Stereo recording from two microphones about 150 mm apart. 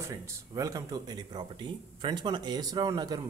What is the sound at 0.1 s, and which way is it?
Speech, 20° right (ahead or behind).